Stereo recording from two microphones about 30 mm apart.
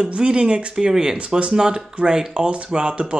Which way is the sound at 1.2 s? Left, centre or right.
Right.